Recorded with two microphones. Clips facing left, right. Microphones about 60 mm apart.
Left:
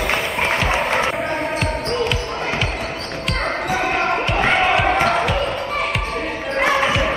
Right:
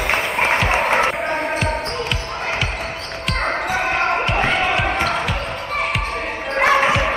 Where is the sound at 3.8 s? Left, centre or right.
Right.